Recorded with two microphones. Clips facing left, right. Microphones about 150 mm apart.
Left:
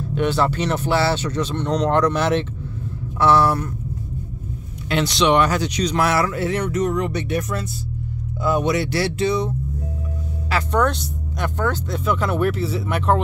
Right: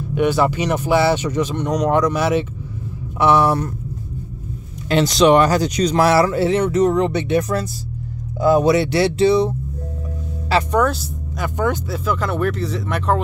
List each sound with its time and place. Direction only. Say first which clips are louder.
0.1 s speech: right 3 dB; 10° right (ahead or behind)
4.8 s speech: right 5 dB; 40° right (ahead or behind)
10.7 s speech: right 2 dB; 5° right (ahead or behind)
12.0 s speech: left 2 dB; centre (ahead or behind)